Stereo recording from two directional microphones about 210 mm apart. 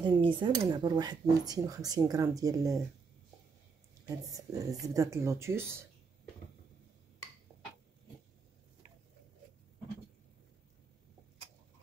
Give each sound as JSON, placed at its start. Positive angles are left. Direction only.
{"t": 0.0, "sound": "speech", "side_deg": -25}
{"t": 4.1, "sound": "speech", "side_deg": -15}